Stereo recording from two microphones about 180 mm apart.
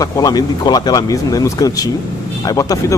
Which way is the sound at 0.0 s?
20° left (ahead or behind).